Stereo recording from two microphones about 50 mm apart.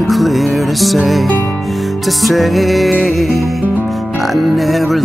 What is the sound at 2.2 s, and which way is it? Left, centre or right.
Music, centre.